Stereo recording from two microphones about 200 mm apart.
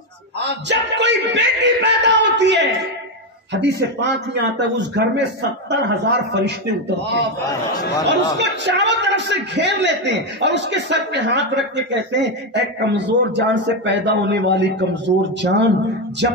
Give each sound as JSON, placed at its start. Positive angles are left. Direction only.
{"t": 0.4, "sound": "a man's voice", "side_deg": -60}
{"t": 8.4, "sound": "a man's voice", "side_deg": -60}